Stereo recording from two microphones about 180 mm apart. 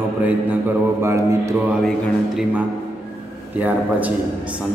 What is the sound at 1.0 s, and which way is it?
Speech, 15° right (ahead or behind).